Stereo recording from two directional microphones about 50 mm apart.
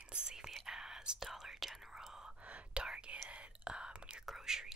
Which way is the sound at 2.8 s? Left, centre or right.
Right.